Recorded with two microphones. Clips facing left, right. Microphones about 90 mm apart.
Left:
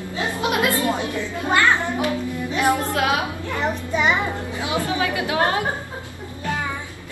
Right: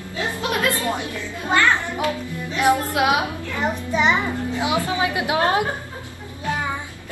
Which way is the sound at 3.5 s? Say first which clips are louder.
Right 1 dB; centre (ahead or behind).